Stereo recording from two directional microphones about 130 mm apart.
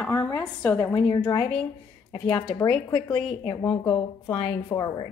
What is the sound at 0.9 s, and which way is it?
Speech, 35° left (ahead or behind).